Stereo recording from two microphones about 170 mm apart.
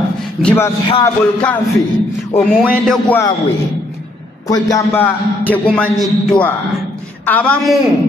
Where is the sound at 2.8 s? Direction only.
Centre (ahead or behind).